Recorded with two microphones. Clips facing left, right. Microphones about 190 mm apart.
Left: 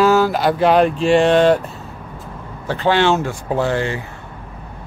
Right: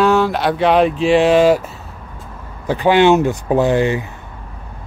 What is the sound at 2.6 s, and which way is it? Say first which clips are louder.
Speech: right 4 dB; 15° right (ahead or behind).